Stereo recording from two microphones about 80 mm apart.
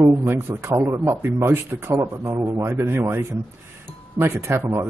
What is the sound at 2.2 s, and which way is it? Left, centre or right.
Speech, right.